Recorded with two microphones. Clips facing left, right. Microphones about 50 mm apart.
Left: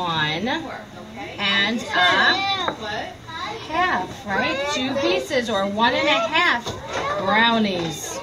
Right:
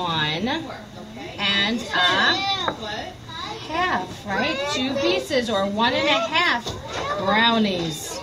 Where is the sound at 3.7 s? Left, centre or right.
Centre.